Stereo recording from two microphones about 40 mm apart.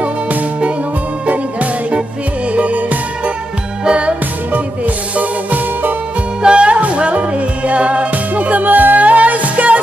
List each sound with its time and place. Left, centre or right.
0.0 s music: right
4.5 s music: right
6.4 s music: right